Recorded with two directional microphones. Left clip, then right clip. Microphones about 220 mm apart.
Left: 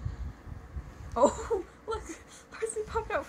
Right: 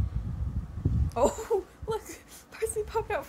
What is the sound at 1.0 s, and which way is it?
Laughter, 50° right (ahead or behind).